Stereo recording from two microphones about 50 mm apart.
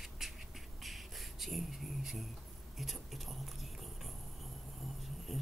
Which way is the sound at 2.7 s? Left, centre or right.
Centre.